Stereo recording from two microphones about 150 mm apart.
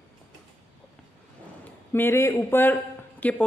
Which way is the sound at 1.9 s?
15° left (ahead or behind).